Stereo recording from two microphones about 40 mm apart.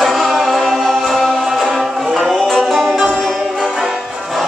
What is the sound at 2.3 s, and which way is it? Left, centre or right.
Music, centre.